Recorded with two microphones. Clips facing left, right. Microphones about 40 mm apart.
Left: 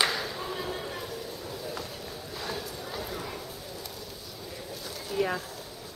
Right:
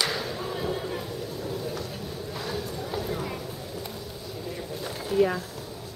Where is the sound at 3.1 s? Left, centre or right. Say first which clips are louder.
Right 5 dB; centre.